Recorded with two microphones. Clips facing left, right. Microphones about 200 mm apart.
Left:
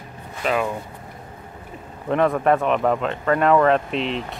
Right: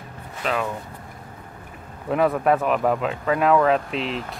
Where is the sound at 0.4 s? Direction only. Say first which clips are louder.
Left 3 dB; 5° left (ahead or behind).